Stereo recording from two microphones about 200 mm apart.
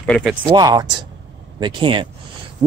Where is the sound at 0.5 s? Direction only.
20° right (ahead or behind).